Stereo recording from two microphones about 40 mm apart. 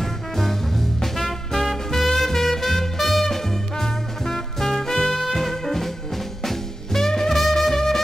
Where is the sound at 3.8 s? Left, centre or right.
Centre.